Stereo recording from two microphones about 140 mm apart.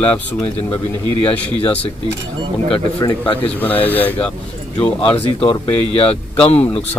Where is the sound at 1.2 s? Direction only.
10° left (ahead or behind).